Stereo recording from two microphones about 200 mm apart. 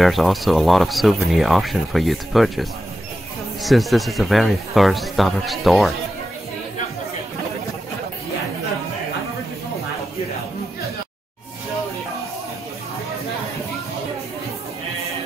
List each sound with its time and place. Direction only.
0.0 s speech: centre (ahead or behind)